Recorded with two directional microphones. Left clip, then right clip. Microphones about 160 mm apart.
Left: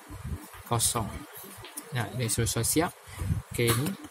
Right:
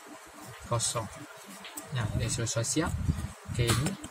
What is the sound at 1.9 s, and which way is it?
Speech, 70° left (ahead or behind).